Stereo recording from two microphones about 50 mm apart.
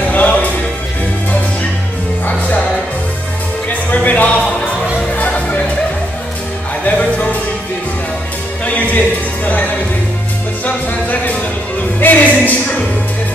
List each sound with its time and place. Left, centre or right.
0.1 s music: left
3.9 s music: left
7.0 s music: left
8.6 s music: left
10.6 s music: left